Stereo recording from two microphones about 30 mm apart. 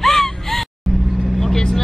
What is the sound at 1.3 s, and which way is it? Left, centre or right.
Vehicle, centre.